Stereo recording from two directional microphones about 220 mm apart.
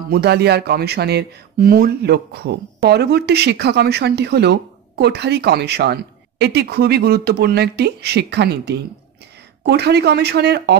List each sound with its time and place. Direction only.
0.1 s speech: 45° right (ahead or behind)